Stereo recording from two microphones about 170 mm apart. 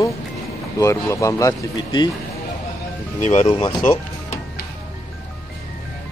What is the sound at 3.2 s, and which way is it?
Speech, 35° left (ahead or behind).